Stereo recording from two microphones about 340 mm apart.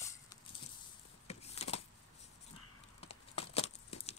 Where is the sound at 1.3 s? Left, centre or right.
Centre.